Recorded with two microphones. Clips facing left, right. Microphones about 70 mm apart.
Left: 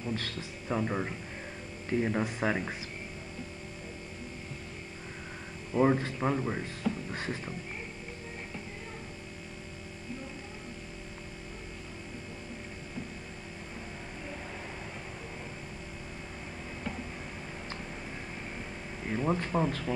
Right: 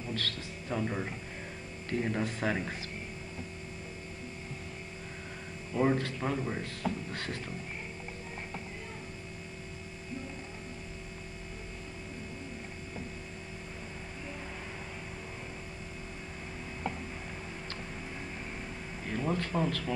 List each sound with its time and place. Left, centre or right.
0.1 s speech: centre
5.7 s speech: centre
19.0 s speech: centre